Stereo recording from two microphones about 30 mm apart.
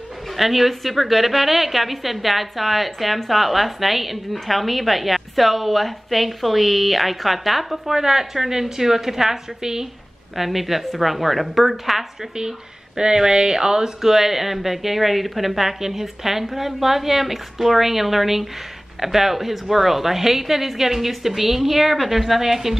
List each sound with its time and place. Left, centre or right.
0.4 s a woman's voice: centre
7.9 s a woman's voice: centre
10.3 s a woman's voice: centre
12.4 s speech: right
14.0 s a woman's voice: centre